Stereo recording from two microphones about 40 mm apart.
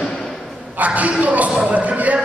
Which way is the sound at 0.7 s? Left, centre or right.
Right.